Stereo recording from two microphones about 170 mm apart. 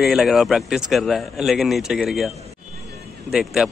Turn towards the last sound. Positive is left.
turn(degrees=0)  # may be behind; listen again after turning